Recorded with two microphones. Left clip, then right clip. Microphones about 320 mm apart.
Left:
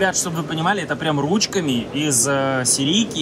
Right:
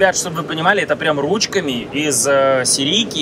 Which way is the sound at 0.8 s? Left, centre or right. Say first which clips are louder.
Right 5 dB; centre.